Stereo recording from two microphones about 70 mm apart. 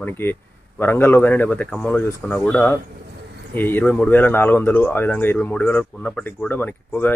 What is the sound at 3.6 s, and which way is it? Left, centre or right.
Speech, left.